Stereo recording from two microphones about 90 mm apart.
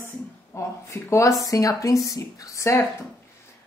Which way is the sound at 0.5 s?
35° left (ahead or behind).